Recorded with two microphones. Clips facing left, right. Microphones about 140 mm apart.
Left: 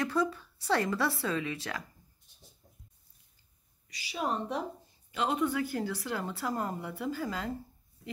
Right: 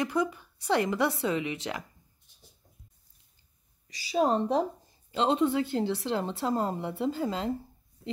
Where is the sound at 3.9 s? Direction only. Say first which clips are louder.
Right 8 dB; 35° right (ahead or behind).